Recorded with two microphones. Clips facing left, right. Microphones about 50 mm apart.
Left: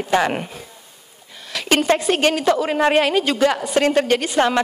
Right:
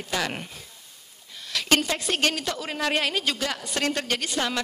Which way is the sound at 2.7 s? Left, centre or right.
Left.